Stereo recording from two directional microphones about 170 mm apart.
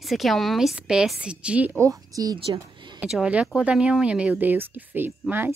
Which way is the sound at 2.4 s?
30° right (ahead or behind).